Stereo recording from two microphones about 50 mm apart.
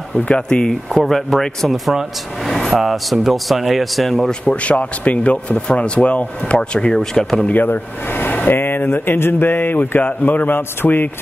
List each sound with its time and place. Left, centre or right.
0.2 s speech: left
0.8 s speech: centre
2.5 s vehicle: centre
2.8 s speech: centre
4.5 s speech: left; by 7.4 s centre
7.4 s speech: left